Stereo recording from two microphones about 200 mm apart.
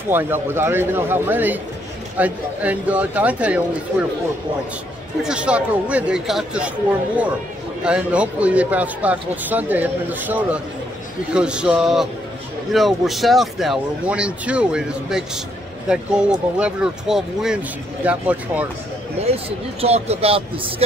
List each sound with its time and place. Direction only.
0.1 s speech: 10° right (ahead or behind)
5.2 s speech: 5° right (ahead or behind)
7.8 s speech: 5° right (ahead or behind)
19.2 s speech: 30° right (ahead or behind)